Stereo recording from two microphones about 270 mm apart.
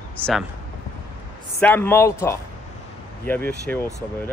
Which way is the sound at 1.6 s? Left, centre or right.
Centre.